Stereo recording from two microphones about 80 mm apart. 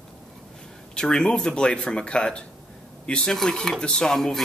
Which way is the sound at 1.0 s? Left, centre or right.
Centre.